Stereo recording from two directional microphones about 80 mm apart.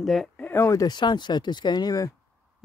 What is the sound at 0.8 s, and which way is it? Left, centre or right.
Speech, left.